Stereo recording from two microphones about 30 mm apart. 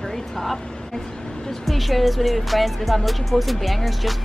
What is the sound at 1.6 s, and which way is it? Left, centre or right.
Speech, centre.